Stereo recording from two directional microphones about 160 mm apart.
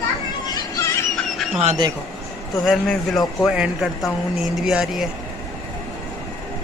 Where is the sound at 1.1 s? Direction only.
Centre (ahead or behind).